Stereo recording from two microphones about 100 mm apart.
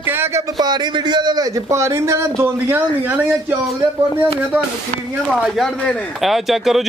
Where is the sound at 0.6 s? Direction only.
45° right (ahead or behind); by 3.6 s 20° right (ahead or behind).